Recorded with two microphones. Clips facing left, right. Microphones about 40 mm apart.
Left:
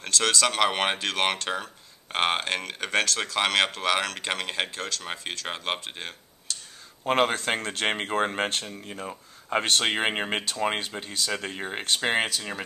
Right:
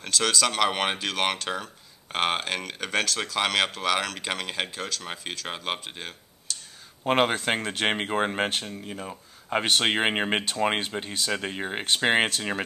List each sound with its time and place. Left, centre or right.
0.0 s speech: centre
7.1 s speech: centre
8.6 s speech: centre
9.7 s speech: centre